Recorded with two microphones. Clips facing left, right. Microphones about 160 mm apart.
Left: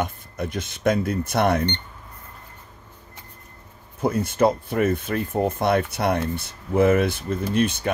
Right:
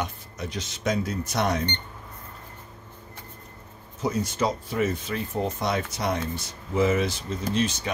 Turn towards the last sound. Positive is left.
turn(degrees=55)  # may be behind; listen again after turning